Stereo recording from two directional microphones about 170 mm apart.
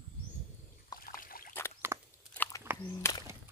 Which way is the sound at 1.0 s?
60° left (ahead or behind).